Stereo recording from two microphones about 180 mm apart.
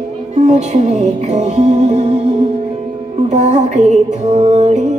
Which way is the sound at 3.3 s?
40° right (ahead or behind).